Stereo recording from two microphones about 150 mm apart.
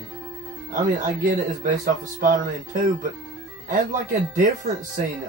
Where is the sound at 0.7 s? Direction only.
65° right (ahead or behind).